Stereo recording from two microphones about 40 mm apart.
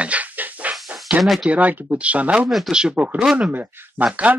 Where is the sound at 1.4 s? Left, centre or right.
Right.